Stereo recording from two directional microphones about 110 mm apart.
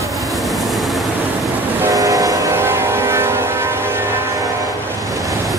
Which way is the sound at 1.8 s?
30° right (ahead or behind).